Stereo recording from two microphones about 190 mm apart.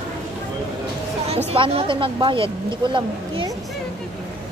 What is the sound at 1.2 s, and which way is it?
Speech, 30° right (ahead or behind).